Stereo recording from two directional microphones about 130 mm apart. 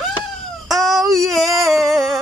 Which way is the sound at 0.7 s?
Centre (ahead or behind).